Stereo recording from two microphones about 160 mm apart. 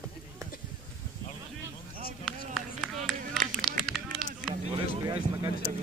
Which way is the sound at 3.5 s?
Centre (ahead or behind).